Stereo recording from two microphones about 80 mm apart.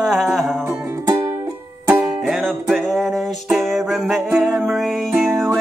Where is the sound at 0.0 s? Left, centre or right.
Centre.